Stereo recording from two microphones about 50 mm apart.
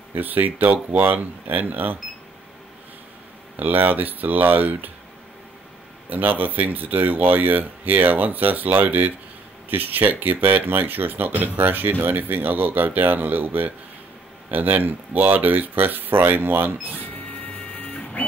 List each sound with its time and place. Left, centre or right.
0.1 s speech: right
3.5 s speech: right
6.0 s speech: right
17.7 s printer: left